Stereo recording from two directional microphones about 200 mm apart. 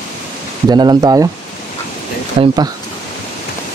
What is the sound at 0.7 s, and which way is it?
Speech, 20° right (ahead or behind).